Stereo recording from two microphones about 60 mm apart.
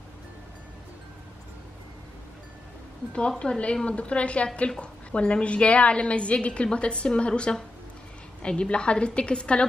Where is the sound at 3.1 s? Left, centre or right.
Centre.